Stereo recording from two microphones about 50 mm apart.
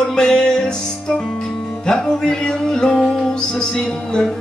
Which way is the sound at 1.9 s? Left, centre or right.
Centre.